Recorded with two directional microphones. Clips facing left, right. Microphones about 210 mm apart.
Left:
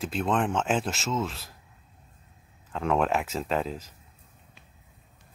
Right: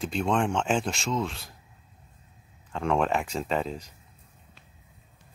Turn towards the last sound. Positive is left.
turn(degrees=5)  # may be behind; listen again after turning